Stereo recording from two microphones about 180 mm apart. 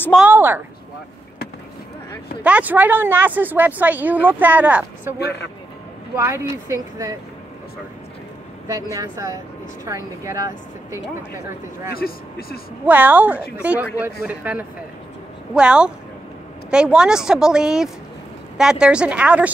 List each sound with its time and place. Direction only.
0.2 s speech: 10° right (ahead or behind)
2.4 s speech: 10° right (ahead or behind)
6.1 s speech: 15° right (ahead or behind)
8.9 s speech: 20° right (ahead or behind)
11.9 s speech: 55° left (ahead or behind)
12.8 s a woman's voice: 10° right (ahead or behind)